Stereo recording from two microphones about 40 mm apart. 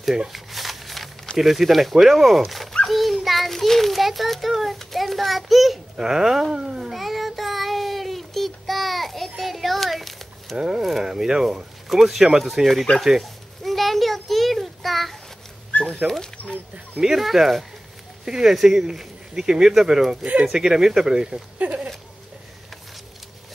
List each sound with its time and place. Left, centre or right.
0.3 s a sound: centre
1.4 s a child's voice: centre
5.9 s speech: centre
6.9 s child singing: centre
9.4 s a sound: centre
10.8 s speech: centre
13.0 s a sound: centre
16.0 s speech: right
16.4 s dog: left
17.2 s speech: centre
18.2 s speech: centre
21.6 s a sound: right